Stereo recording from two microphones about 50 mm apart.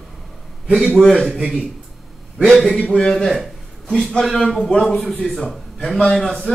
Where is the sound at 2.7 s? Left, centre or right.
Centre.